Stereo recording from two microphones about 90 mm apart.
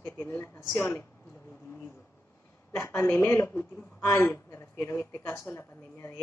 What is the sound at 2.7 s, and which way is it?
A woman's voice, 30° left (ahead or behind).